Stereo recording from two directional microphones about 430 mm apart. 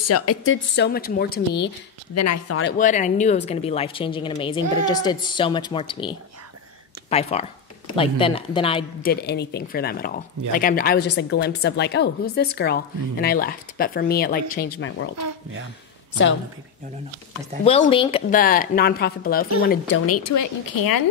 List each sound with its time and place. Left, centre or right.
0.0 s a woman's voice: left
2.1 s speech: left
2.8 s a woman's voice: centre
15.1 s speech: right
17.6 s a woman's voice: centre
20.1 s speech: left